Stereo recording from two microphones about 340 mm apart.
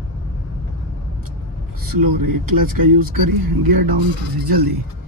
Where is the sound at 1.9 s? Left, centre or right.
Right.